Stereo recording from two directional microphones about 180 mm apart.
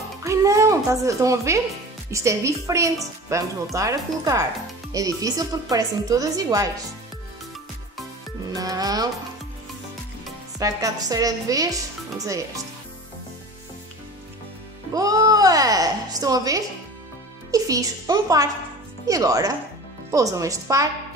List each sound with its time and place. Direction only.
0.2 s music: 15° right (ahead or behind)
2.0 s a woman's voice: 15° right (ahead or behind)
8.5 s a woman's voice: 20° right (ahead or behind)
10.6 s a woman's voice: 20° right (ahead or behind)
15.0 s a woman's voice: 20° right (ahead or behind)